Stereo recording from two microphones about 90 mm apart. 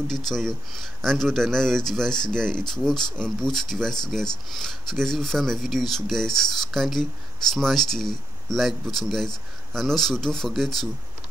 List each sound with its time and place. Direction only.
0.3 s speech: 5° left (ahead or behind)